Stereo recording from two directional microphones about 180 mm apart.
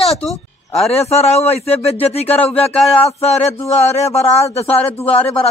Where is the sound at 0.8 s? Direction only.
35° left (ahead or behind).